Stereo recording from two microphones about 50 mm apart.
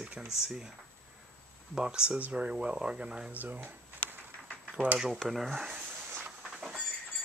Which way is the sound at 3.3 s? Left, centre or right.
Right.